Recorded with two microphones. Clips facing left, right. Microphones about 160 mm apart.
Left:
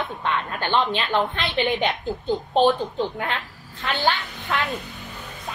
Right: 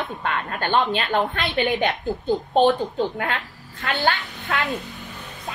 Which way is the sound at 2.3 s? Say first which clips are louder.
Right 1 dB; 20° right (ahead or behind).